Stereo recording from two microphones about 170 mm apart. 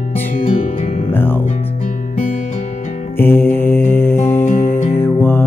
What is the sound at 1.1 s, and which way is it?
Music, 10° left (ahead or behind).